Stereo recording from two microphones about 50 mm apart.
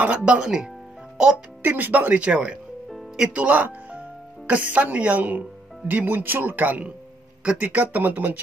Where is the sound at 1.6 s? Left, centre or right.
Right.